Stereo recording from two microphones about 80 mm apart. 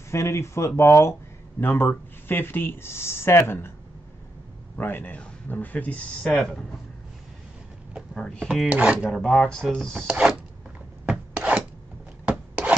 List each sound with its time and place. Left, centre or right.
0.1 s speech: left
4.7 s speech: left
6.2 s speech: centre
8.1 s speech: centre
8.6 s speech: centre
9.1 s speech: centre
10.0 s speech: centre
11.1 s filing: centre
12.3 s rub: centre